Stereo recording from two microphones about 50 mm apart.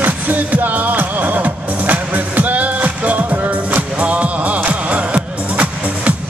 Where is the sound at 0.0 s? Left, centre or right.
Right.